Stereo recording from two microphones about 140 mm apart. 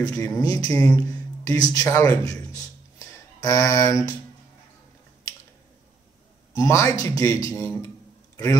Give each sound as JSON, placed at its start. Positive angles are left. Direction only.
{"t": 0.0, "sound": "a man's voice", "side_deg": 25}
{"t": 0.7, "sound": "speech", "side_deg": 15}
{"t": 1.0, "sound": "a man's voice", "side_deg": 25}
{"t": 6.5, "sound": "a man's voice", "side_deg": 20}